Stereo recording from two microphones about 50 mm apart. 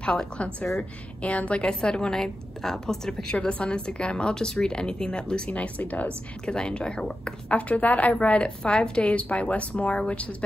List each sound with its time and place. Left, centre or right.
0.0 s a woman's voice: centre
3.3 s speech: left
6.4 s speech: centre